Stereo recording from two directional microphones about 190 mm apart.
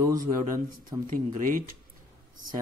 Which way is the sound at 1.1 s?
45° right (ahead or behind).